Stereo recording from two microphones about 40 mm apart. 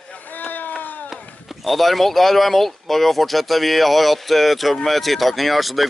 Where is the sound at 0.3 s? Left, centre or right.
Left.